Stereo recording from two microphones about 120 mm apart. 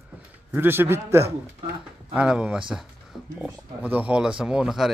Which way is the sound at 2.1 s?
10° right (ahead or behind).